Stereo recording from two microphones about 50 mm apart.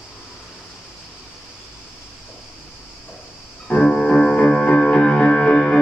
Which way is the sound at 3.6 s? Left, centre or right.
Left.